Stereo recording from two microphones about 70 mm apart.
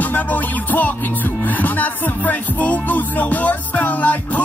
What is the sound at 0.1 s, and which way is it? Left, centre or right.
Music, left.